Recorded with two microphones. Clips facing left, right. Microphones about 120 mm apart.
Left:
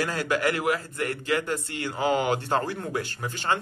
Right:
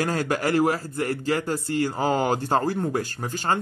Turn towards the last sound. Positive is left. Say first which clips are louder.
# right 2 dB
turn(degrees=-40)  # may be behind; listen again after turning